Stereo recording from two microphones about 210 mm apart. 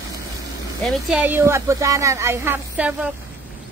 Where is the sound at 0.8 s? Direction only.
Centre (ahead or behind).